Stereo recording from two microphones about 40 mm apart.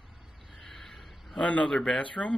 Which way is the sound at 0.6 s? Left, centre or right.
Centre.